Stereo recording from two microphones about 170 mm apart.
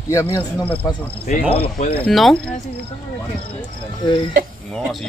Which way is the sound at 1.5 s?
35° left (ahead or behind).